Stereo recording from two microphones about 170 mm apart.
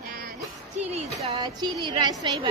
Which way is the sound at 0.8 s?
40° right (ahead or behind).